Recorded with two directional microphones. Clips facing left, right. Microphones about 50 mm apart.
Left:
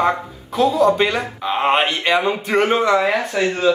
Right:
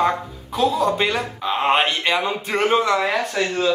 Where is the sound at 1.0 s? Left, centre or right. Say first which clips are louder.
Left 2 dB; centre.